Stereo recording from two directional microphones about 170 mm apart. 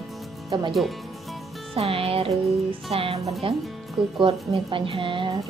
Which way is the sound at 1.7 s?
35° right (ahead or behind).